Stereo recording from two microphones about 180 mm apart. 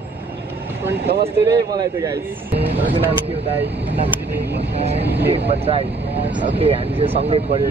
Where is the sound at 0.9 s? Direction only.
65° right (ahead or behind).